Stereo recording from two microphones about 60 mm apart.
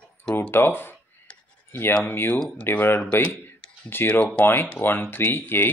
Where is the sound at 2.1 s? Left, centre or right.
Left.